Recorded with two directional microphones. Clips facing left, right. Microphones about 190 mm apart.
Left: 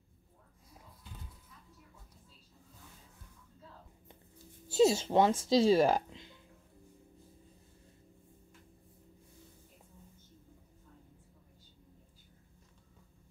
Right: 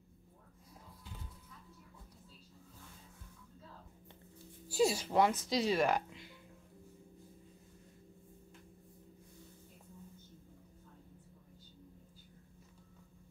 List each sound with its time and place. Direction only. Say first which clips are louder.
4.6 s speech: left 5 dB; 25° left (ahead or behind)